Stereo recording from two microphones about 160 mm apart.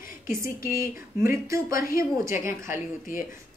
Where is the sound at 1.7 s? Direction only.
65° left (ahead or behind).